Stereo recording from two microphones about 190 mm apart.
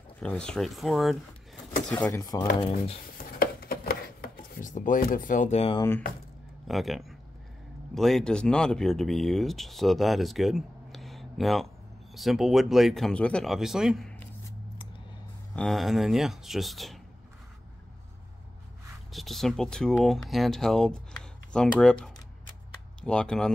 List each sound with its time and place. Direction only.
0.2 s speech: 5° left (ahead or behind)
3.3 s chopping: 50° left (ahead or behind); by 5.8 s 35° left (ahead or behind)
5.8 s speech: 10° left (ahead or behind)
6.7 s speech: centre (ahead or behind)
15.5 s speech: centre (ahead or behind)
19.1 s speech: centre (ahead or behind)